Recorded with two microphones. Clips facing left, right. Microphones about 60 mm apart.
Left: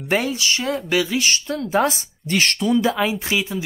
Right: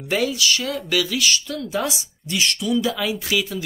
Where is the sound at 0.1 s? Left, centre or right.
Left.